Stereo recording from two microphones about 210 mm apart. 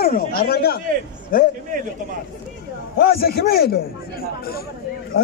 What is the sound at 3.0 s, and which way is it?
Speech, 45° left (ahead or behind).